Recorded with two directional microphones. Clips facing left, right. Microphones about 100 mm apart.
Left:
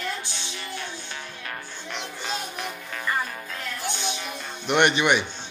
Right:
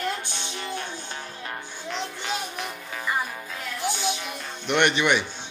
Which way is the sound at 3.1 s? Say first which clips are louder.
Even; 10° right (ahead or behind).